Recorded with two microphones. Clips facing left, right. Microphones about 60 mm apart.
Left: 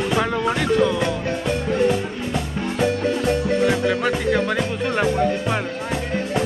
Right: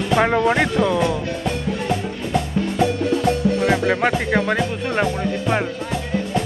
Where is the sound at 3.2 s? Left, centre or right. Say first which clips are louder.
Even; right.